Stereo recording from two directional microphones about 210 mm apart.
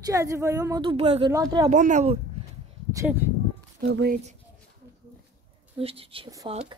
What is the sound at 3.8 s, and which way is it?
Speech, 50° right (ahead or behind).